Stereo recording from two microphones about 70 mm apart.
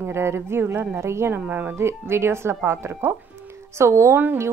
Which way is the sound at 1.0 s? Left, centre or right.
Right.